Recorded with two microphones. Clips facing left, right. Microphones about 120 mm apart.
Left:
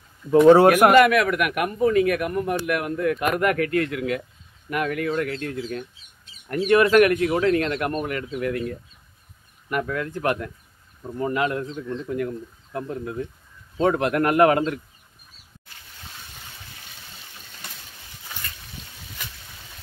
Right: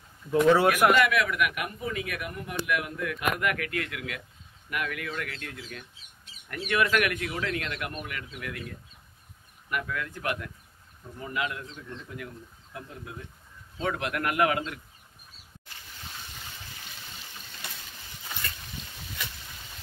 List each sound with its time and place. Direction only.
0.7 s speech: 55° left (ahead or behind); by 10.5 s 40° left (ahead or behind)
11.0 s speech: 50° left (ahead or behind)